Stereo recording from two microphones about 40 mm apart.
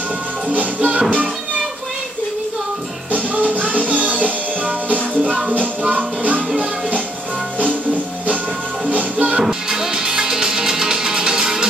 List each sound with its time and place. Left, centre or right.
0.5 s music: right
3.1 s music: right
8.8 s music: right
9.5 s music: centre